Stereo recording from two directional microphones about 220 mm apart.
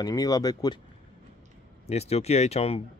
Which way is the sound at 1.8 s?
30° left (ahead or behind).